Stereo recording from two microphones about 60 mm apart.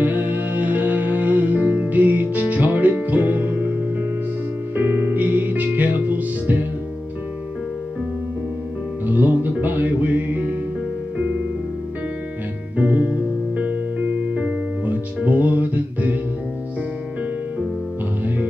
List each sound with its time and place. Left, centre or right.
0.0 s music: right
4.7 s music: right
9.0 s music: right
12.7 s music: right